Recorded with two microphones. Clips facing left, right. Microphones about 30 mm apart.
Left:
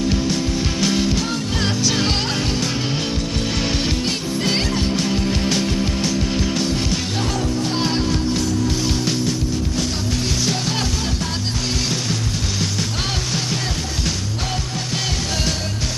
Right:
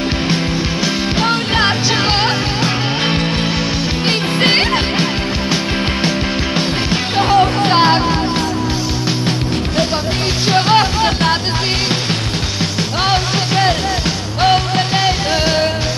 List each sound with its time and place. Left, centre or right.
1.1 s music: right
4.4 s music: right
6.0 s music: right
10.4 s music: right
13.1 s music: right